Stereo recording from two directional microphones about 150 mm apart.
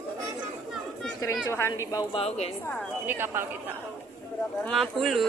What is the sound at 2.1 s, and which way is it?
Speech, 45° left (ahead or behind).